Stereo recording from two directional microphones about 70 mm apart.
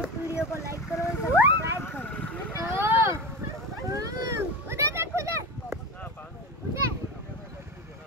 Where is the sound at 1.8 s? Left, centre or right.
Left.